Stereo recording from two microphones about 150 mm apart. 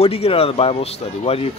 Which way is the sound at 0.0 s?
40° left (ahead or behind).